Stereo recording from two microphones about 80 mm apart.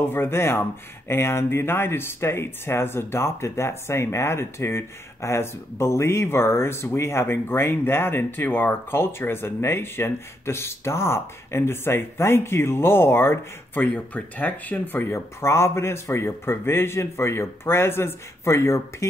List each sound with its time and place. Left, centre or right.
0.0 s speech: left
13.9 s speech: centre; by 19.0 s left